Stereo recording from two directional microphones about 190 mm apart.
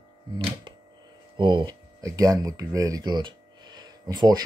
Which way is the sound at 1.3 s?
25° right (ahead or behind).